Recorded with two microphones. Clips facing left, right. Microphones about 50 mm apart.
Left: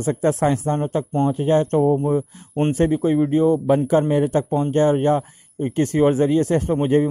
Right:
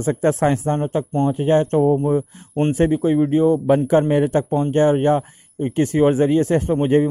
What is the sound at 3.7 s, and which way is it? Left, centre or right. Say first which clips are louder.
A man's voice: right 2 dB; right.